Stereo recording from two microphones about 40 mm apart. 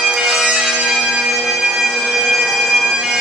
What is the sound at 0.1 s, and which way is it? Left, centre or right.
Bagpipes, centre.